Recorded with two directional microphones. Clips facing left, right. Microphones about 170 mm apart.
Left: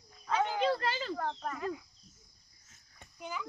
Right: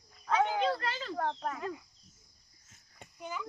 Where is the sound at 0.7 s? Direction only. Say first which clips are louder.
Left 3 dB; 30° left (ahead or behind).